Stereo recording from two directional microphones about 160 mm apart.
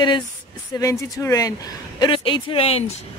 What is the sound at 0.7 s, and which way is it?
Speech, 20° left (ahead or behind).